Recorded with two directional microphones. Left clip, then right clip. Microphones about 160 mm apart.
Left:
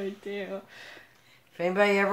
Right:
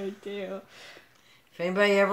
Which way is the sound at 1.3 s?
Centre (ahead or behind).